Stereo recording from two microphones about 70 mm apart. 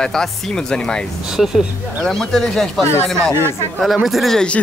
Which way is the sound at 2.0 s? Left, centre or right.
Centre.